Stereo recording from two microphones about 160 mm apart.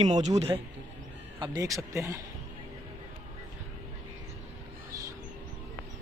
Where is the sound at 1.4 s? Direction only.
25° right (ahead or behind).